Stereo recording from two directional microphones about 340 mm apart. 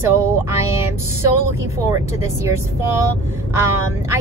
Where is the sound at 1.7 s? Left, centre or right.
Centre.